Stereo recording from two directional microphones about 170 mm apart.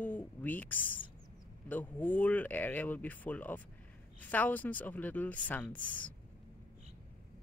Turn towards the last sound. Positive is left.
turn(degrees=10)  # may be behind; listen again after turning